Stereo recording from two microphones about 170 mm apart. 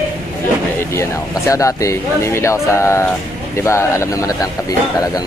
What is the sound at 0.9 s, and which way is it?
Speech, 20° left (ahead or behind).